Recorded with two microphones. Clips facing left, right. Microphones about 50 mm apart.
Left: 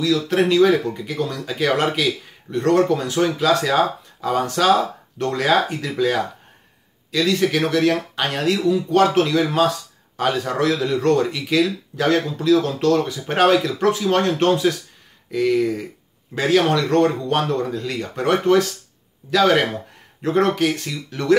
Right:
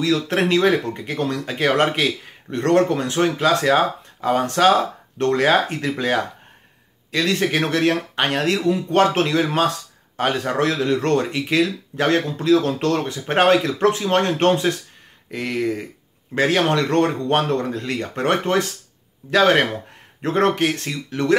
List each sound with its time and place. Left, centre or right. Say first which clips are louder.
0.0 s speech: left 1 dB; right
1.4 s speech: right 1 dB; right
11.3 s speech: even; right